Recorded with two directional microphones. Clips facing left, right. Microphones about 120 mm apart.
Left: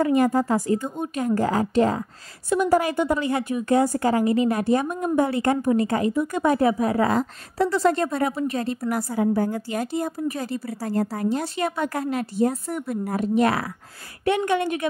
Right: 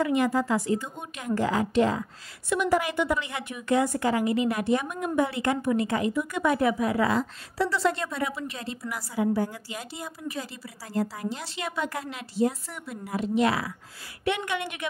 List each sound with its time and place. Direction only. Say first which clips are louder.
0.0 s a woman's voice: left 5 dB; 45° left (ahead or behind)